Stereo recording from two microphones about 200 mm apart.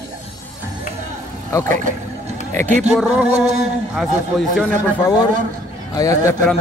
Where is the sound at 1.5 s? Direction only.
15° left (ahead or behind).